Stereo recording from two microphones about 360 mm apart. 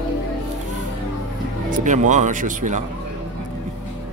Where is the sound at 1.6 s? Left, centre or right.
Right.